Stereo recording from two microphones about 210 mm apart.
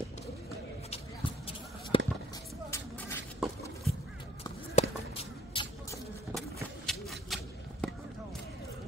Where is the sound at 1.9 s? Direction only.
25° left (ahead or behind).